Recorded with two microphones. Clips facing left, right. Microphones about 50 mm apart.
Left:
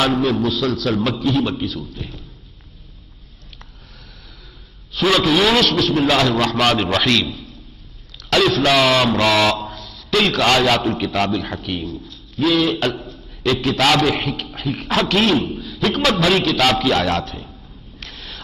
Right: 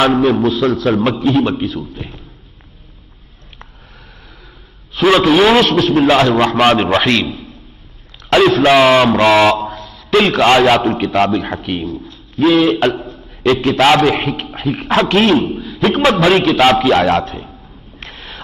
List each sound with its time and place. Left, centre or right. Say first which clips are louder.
0.0 s a man's voice: right 6 dB; right
4.9 s a man's voice: right 6 dB; right
15.5 s a sound: right 5 dB; right